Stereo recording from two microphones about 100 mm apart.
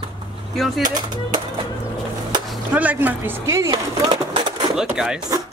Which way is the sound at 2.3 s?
45° right (ahead or behind).